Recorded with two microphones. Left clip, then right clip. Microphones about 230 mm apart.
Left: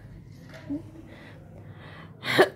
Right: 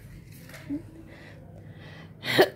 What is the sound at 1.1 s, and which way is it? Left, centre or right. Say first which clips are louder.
Gasp: even; centre.